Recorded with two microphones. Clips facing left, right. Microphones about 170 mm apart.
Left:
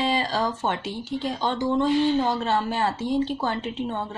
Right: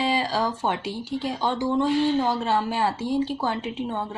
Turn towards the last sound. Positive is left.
turn(degrees=-10)  # may be behind; listen again after turning